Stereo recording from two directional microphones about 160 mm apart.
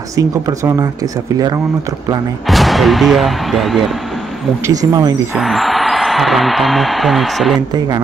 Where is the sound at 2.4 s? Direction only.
Centre (ahead or behind).